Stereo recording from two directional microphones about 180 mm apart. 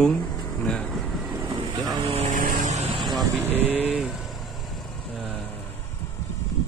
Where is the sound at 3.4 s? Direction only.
10° right (ahead or behind).